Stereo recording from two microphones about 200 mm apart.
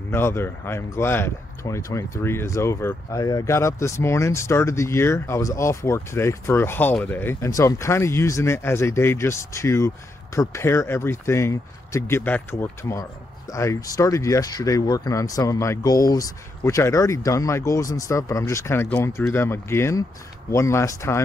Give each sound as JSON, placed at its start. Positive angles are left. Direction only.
{"t": 0.1, "sound": "speech", "side_deg": 10}